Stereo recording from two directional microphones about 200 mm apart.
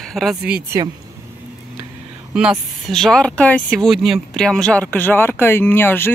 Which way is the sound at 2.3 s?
5° right (ahead or behind).